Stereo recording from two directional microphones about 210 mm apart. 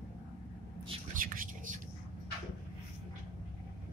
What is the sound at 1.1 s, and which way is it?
Whispering, 40° right (ahead or behind).